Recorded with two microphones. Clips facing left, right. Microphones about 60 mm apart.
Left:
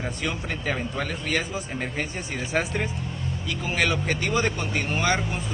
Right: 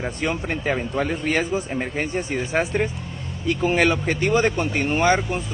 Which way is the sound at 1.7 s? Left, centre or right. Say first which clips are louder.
Right 5 dB; centre.